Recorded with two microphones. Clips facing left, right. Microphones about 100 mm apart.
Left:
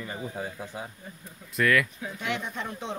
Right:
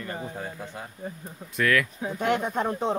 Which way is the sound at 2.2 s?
45° right (ahead or behind).